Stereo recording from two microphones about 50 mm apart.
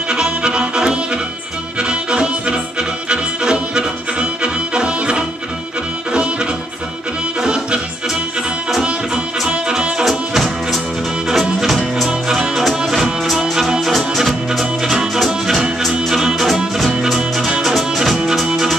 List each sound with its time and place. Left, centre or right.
0.1 s music: centre
9.4 s music: centre
10.0 s music: centre